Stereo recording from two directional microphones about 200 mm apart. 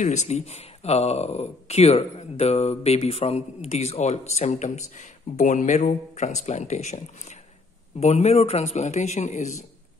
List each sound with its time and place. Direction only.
0.0 s speech: 35° left (ahead or behind)